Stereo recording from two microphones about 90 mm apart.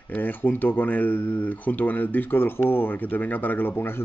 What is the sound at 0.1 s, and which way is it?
Speech, 20° left (ahead or behind).